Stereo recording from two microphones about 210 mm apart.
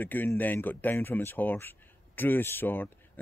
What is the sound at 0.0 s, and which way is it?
Speech, 10° left (ahead or behind).